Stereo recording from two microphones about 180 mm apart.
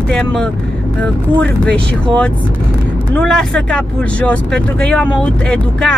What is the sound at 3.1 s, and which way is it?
Speech, 5° left (ahead or behind).